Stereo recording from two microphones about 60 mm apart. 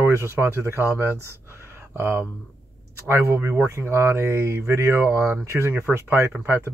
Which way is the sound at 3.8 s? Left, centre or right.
Right.